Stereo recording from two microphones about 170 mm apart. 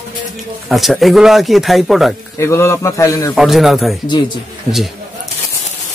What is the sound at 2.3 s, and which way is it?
A man's voice, 15° left (ahead or behind).